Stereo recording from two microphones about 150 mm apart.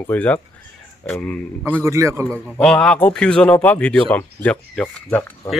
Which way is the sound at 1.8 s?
20° right (ahead or behind).